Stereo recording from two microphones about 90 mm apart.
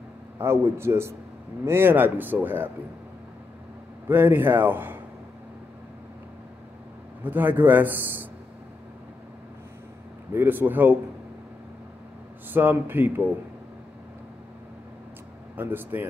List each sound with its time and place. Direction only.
0.4 s speech: 30° right (ahead or behind)
4.1 s speech: 25° right (ahead or behind)
7.2 s speech: 20° right (ahead or behind)
10.3 s speech: 20° right (ahead or behind)
12.4 s speech: 20° right (ahead or behind)
15.5 s speech: 20° right (ahead or behind)